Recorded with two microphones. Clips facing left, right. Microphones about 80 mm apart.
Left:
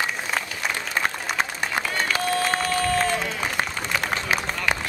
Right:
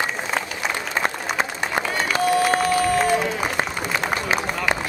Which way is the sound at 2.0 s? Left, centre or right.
Centre.